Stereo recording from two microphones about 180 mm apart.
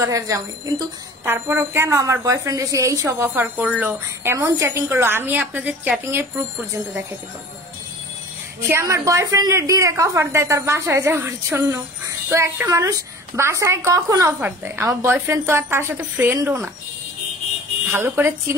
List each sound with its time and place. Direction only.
0.0 s speech: 15° right (ahead or behind)
8.5 s speech: 15° right (ahead or behind)
17.9 s speech: 10° right (ahead or behind)